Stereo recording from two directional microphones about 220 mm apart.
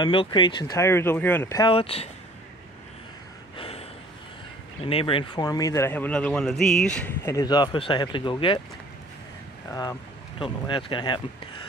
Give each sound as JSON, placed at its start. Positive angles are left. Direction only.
{"t": 0.0, "sound": "speech", "side_deg": 20}
{"t": 3.5, "sound": "a sound", "side_deg": 25}
{"t": 4.8, "sound": "speech", "side_deg": 25}
{"t": 9.7, "sound": "speech", "side_deg": 15}